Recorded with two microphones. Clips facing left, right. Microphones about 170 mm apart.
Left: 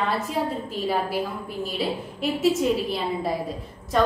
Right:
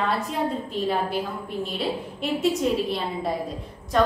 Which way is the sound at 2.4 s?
Centre (ahead or behind).